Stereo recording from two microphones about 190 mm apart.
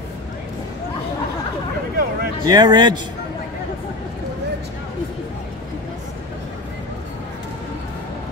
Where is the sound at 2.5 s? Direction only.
20° right (ahead or behind).